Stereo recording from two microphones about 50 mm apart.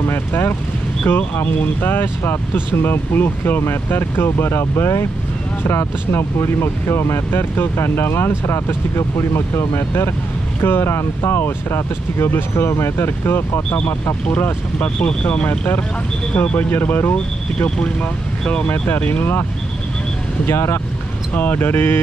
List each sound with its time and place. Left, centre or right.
0.0 s speech: left
14.4 s speech: left
16.3 s speech: left
17.1 s speech: centre
18.6 s speech: left
20.4 s speech: left
21.4 s speech: left